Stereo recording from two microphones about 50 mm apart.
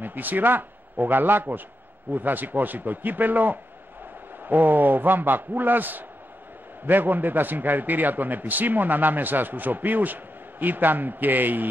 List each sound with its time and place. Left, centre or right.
0.0 s a man's voice: right